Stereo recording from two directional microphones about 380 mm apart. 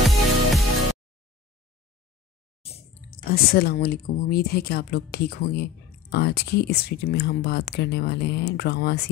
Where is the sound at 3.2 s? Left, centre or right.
Left.